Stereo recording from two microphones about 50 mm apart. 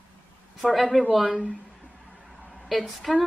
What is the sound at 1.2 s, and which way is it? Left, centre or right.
Speech, centre.